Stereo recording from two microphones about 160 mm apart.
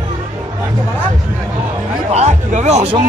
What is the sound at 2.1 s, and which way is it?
Music, 45° right (ahead or behind).